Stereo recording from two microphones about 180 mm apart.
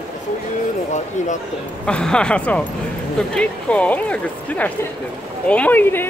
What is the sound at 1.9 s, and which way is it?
Speech, 5° left (ahead or behind).